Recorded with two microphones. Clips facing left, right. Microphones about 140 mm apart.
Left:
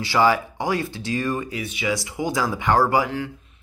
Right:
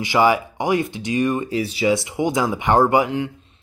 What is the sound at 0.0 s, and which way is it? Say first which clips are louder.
Speech: right 2 dB; 15° right (ahead or behind).